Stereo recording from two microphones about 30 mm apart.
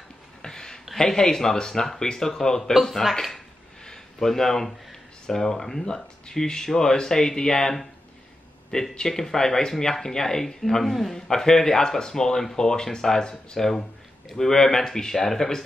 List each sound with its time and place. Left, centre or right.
0.4 s a sound: centre
0.9 s speech: left
2.8 s speech: centre
3.8 s a sound: centre
5.2 s speech: centre
9.1 s speech: centre
13.6 s speech: centre